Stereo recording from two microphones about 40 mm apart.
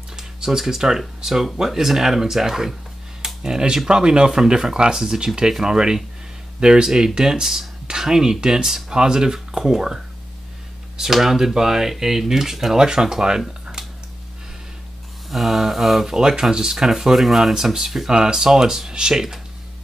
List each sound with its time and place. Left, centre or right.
0.4 s speech: centre
13.5 s a sound: centre
15.2 s speech: centre
16.1 s speech: centre